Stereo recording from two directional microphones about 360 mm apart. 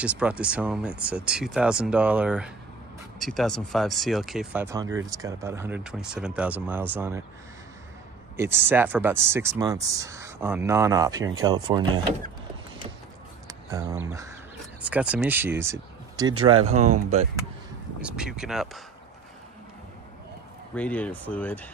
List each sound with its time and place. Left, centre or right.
0.0 s speech: centre
8.4 s speech: centre
13.5 s a sound: centre
14.9 s speech: centre
18.0 s speech: centre
20.7 s speech: centre